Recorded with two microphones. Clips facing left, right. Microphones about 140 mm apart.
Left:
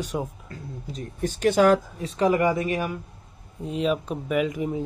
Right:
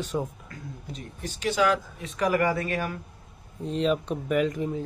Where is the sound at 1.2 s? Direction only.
50° left (ahead or behind).